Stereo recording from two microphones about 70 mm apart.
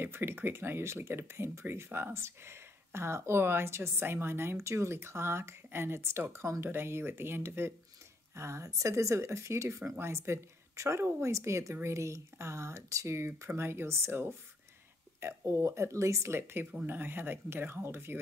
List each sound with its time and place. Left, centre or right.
0.0 s speech: right
8.4 s speech: right